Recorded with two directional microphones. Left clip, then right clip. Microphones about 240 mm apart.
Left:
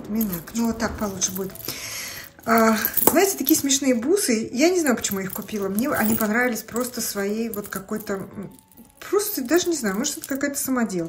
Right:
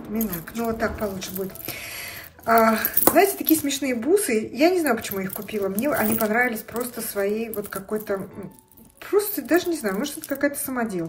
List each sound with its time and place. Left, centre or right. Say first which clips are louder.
0.1 s speech: left 1 dB; centre